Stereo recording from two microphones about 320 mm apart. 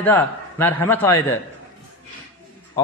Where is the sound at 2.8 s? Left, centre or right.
Centre.